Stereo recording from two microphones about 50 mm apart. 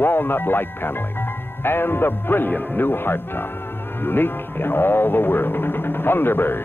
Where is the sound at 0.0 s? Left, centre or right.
Left.